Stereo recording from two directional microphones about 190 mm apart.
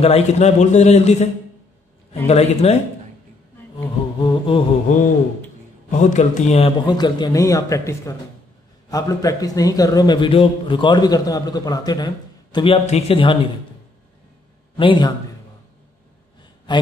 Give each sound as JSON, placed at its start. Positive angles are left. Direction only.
{"t": 0.0, "sound": "a man's voice", "side_deg": 35}
{"t": 4.2, "sound": "a sound", "side_deg": 25}
{"t": 5.9, "sound": "a man's voice", "side_deg": 40}
{"t": 6.9, "sound": "a man's voice", "side_deg": 20}
{"t": 14.8, "sound": "a man's voice", "side_deg": 25}
{"t": 16.7, "sound": "speech", "side_deg": 25}